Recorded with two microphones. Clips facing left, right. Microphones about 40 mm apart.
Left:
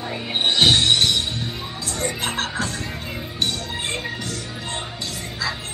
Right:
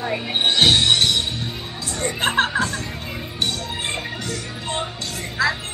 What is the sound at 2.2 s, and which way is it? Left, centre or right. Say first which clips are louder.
Music: right 11 dB; right.